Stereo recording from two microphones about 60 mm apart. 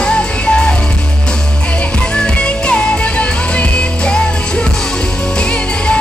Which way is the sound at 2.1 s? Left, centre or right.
Centre.